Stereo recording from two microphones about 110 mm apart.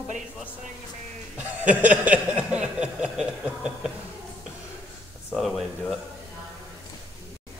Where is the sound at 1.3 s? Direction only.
15° right (ahead or behind).